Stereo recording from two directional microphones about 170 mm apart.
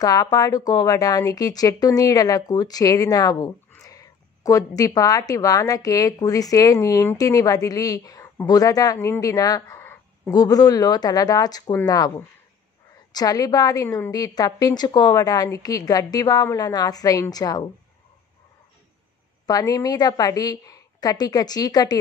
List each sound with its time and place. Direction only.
0.0 s speech: 20° left (ahead or behind)
13.1 s speech: 20° left (ahead or behind)
19.4 s speech: 25° left (ahead or behind)